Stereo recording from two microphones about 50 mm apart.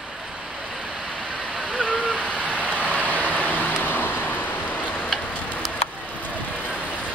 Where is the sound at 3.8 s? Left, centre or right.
Left.